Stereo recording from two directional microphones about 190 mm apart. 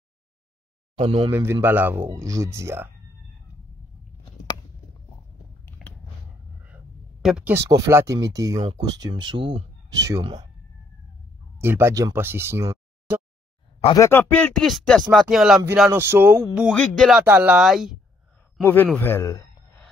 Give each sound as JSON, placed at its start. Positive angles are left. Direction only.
{"t": 0.9, "sound": "speech", "side_deg": -25}
{"t": 1.3, "sound": "speech", "side_deg": -10}
{"t": 5.8, "sound": "a sound", "side_deg": 0}
{"t": 6.6, "sound": "speech", "side_deg": -5}
{"t": 11.5, "sound": "speech", "side_deg": -10}
{"t": 13.9, "sound": "speech", "side_deg": 15}
{"t": 18.6, "sound": "a man's voice", "side_deg": 10}
{"t": 18.9, "sound": "a sound", "side_deg": 10}